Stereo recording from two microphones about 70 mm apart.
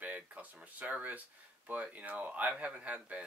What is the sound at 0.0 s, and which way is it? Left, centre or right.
Speech, centre.